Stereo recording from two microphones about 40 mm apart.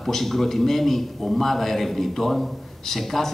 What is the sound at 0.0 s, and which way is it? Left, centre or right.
A man's voice, centre.